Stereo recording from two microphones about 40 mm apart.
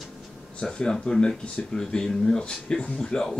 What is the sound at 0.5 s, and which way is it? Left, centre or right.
Speech, left.